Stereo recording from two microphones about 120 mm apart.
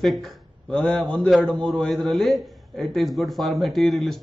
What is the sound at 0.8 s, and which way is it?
A man's voice, 10° left (ahead or behind).